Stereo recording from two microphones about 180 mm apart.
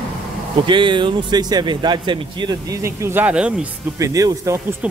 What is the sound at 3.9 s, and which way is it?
Speech, 20° right (ahead or behind).